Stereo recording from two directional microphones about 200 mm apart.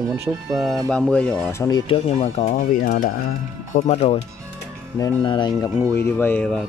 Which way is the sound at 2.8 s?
45° left (ahead or behind).